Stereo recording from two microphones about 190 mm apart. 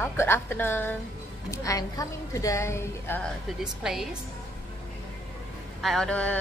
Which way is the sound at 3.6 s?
Centre (ahead or behind).